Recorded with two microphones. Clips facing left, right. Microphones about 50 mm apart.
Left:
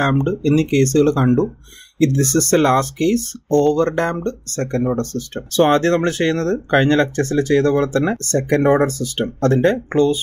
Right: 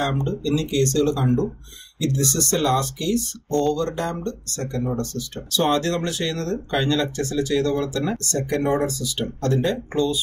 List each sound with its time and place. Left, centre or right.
0.0 s speech: left